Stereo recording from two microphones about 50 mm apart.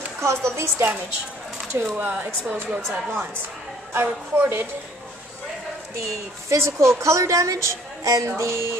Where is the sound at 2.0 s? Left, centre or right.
Right.